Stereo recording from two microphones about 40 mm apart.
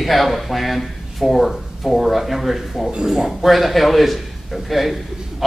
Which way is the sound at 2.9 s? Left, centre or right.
Centre.